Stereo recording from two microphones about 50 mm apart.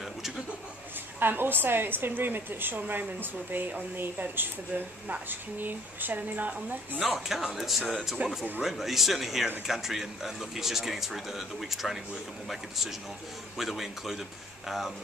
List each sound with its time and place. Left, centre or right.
1.2 s a woman's voice: right
7.0 s speech: centre